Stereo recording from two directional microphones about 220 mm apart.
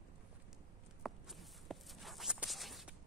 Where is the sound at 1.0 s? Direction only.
Centre (ahead or behind).